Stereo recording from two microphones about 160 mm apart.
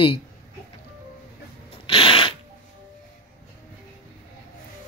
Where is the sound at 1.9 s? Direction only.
35° left (ahead or behind).